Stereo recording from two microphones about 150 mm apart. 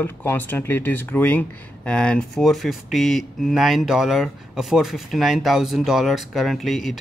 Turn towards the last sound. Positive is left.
turn(degrees=0)  # may be behind; listen again after turning